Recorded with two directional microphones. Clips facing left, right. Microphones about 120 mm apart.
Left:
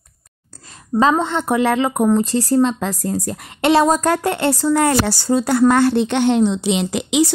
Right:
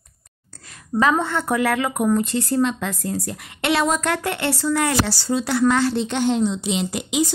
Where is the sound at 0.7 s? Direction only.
25° left (ahead or behind).